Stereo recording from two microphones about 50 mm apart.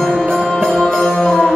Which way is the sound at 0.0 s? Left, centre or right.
Centre.